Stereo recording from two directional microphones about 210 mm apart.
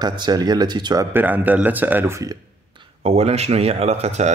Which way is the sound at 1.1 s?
10° right (ahead or behind).